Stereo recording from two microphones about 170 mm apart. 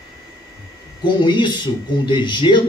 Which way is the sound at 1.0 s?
25° left (ahead or behind).